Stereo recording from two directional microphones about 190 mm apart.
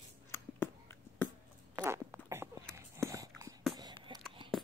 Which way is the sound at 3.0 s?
15° right (ahead or behind).